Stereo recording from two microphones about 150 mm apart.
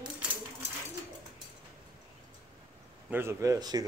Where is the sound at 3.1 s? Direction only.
15° right (ahead or behind).